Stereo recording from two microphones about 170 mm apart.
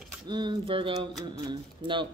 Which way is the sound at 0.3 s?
25° right (ahead or behind).